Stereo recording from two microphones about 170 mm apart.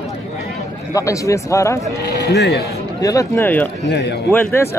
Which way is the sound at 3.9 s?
80° left.